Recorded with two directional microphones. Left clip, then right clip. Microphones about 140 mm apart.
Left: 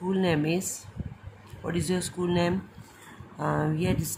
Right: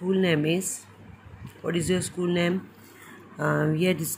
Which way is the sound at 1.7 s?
5° right (ahead or behind).